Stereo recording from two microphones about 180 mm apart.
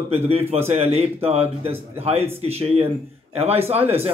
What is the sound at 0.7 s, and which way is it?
A man's voice, 35° right (ahead or behind).